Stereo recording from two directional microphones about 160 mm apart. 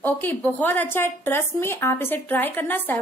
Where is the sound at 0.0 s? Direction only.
10° left (ahead or behind).